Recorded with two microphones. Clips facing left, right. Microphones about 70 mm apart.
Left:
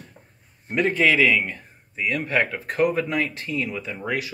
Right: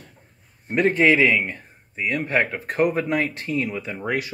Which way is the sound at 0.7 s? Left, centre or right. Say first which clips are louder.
Right 2 dB; right.